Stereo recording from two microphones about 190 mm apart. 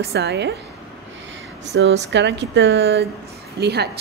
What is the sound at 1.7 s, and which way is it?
A woman's voice, 65° right (ahead or behind).